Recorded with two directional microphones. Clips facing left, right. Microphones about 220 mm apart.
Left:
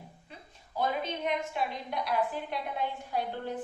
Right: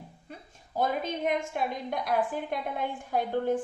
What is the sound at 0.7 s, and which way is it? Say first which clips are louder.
A woman's voice: right 3 dB; 50° right (ahead or behind).